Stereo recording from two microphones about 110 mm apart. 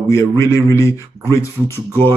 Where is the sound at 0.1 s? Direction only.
25° left (ahead or behind).